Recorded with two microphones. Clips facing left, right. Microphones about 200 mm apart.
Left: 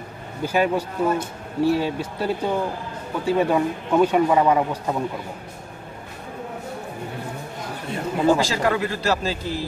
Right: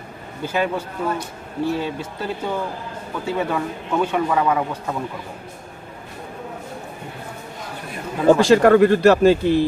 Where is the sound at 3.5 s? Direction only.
15° left (ahead or behind).